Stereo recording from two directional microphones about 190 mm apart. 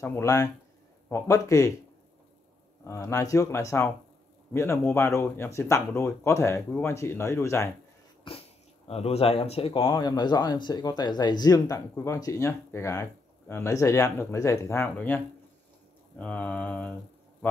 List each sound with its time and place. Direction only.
0.0 s speech: 15° left (ahead or behind)
2.8 s speech: 15° left (ahead or behind)
8.3 s speech: 25° left (ahead or behind); by 16.9 s 5° left (ahead or behind)